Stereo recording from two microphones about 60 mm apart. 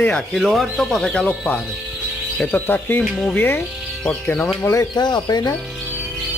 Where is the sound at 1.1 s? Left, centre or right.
Centre.